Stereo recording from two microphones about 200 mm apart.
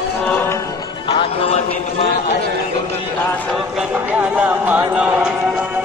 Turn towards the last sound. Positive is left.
turn(degrees=-5)  # may be behind; listen again after turning